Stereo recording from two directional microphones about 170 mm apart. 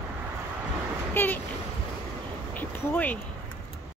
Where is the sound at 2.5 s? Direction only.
10° left (ahead or behind).